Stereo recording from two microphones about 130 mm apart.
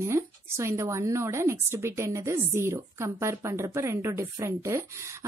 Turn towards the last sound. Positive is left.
turn(degrees=-20)  # may be behind; listen again after turning